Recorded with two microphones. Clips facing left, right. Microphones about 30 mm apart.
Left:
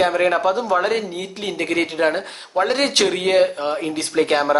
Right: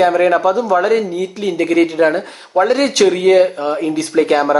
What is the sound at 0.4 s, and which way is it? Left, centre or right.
Speech, left.